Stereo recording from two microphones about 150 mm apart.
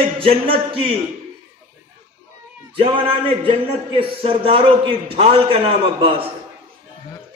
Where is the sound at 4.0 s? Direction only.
40° right (ahead or behind).